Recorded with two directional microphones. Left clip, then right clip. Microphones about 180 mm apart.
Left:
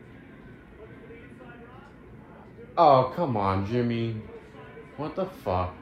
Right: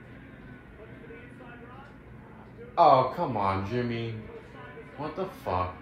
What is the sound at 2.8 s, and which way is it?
Speech, 45° left (ahead or behind).